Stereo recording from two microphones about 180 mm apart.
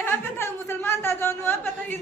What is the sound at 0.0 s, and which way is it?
Speech, 10° left (ahead or behind).